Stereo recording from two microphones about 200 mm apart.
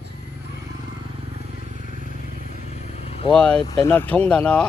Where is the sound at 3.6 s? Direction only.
15° left (ahead or behind).